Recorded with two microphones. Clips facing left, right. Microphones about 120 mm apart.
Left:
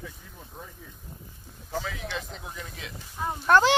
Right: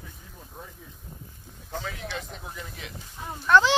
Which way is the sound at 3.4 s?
45° left (ahead or behind).